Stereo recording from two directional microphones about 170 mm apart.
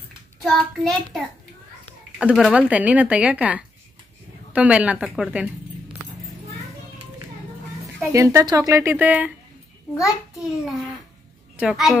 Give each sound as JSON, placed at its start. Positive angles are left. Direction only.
{"t": 0.4, "sound": "a child's voice", "side_deg": 0}
{"t": 8.0, "sound": "speech", "side_deg": -20}
{"t": 10.6, "sound": "a child's voice", "side_deg": 0}